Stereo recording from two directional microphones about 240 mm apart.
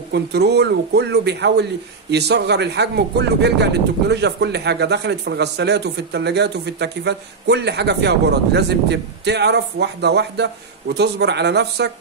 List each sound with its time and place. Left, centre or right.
0.1 s a man's voice: right